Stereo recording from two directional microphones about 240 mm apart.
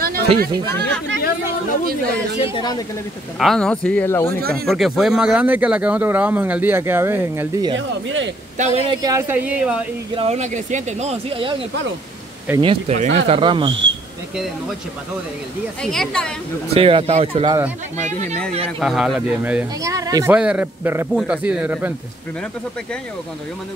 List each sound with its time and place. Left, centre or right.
0.7 s speech: centre
2.4 s speech: centre
3.3 s speech: centre
4.4 s speech: right
4.6 s speech: centre
7.7 s speech: right
8.5 s speech: right
9.0 s speech: centre
10.1 s speech: right
15.8 s speech: centre
16.7 s speech: right
18.8 s speech: centre